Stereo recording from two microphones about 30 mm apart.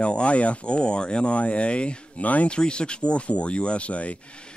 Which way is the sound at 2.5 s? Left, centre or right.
Left.